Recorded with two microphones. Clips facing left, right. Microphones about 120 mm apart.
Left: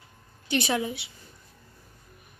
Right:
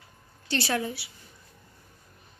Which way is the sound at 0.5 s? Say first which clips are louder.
Left 2 dB; 15° left (ahead or behind).